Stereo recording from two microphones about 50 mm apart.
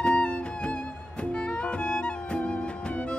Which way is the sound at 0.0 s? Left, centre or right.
Left.